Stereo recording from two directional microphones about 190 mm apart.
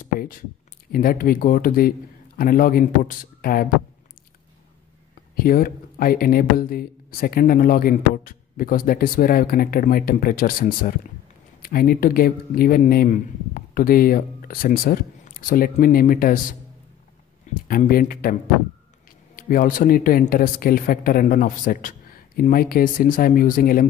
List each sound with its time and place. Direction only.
0.0 s a sound: 45° left (ahead or behind)
0.9 s speech: 50° left (ahead or behind)
5.3 s speech: 50° left (ahead or behind)
17.6 s speech: 50° left (ahead or behind)
19.3 s speech: 45° left (ahead or behind)